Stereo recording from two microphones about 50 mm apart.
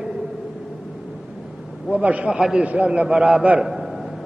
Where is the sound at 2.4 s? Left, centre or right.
Centre.